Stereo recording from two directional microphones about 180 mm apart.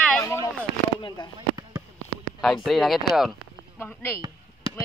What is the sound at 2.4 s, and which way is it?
Speech, centre (ahead or behind).